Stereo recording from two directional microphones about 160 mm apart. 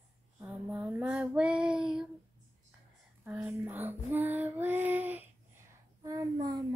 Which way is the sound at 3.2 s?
10° right (ahead or behind).